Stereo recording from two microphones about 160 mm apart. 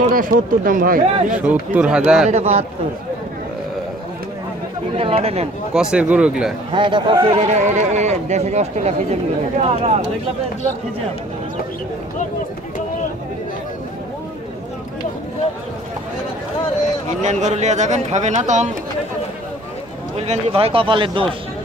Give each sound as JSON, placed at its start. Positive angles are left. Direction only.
{"t": 0.0, "sound": "speech", "side_deg": -60}
{"t": 1.3, "sound": "a man's voice", "side_deg": -10}
{"t": 2.2, "sound": "speech", "side_deg": -40}
{"t": 4.9, "sound": "speech", "side_deg": -35}
{"t": 5.7, "sound": "speech", "side_deg": -5}
{"t": 6.7, "sound": "speech", "side_deg": -30}
{"t": 17.2, "sound": "speech", "side_deg": -45}
{"t": 20.2, "sound": "speech", "side_deg": -40}